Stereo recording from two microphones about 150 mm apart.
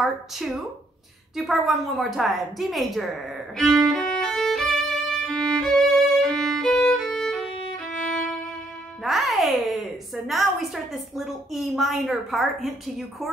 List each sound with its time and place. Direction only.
0.0 s a woman's voice: centre (ahead or behind)
3.5 s violin: centre (ahead or behind)
7.7 s music: 5° left (ahead or behind)
9.0 s a child's voice: centre (ahead or behind)